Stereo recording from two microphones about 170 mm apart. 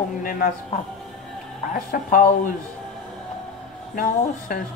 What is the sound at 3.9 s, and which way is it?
Speech, 55° left (ahead or behind).